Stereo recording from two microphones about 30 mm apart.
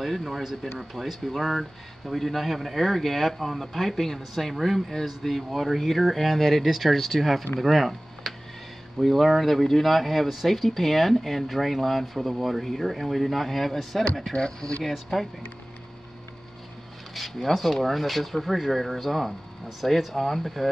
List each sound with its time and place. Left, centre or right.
0.0 s speech: centre
14.3 s speech: left
14.8 s speech: centre
17.1 s speech: centre